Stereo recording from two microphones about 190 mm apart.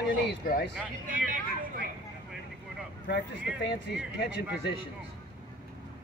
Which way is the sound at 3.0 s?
65° left (ahead or behind).